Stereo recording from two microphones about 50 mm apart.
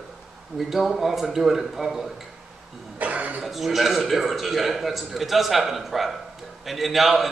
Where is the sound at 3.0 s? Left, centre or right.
Right.